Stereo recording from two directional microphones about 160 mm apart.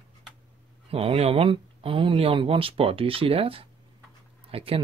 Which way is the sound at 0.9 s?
40° right (ahead or behind).